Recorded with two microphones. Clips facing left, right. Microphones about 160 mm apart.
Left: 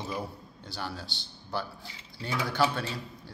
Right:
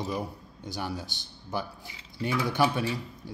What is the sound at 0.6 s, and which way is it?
Speech, 15° right (ahead or behind).